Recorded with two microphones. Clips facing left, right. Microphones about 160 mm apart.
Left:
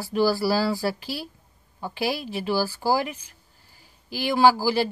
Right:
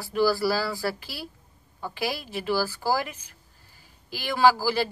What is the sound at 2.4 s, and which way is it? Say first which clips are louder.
Speech: left 1 dB; 15° left (ahead or behind).